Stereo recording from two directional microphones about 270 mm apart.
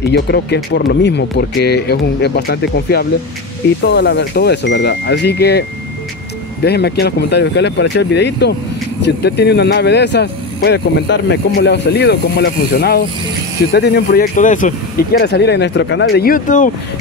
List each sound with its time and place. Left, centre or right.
0.1 s speech: left